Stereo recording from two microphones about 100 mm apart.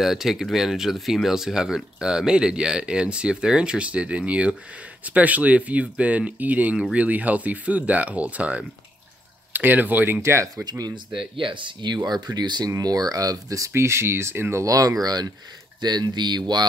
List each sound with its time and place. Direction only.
0.0 s speech: centre (ahead or behind); by 10.5 s 25° right (ahead or behind)
10.6 s speech: 40° right (ahead or behind)
11.3 s speech: 55° right (ahead or behind)
12.0 s speech: 40° right (ahead or behind)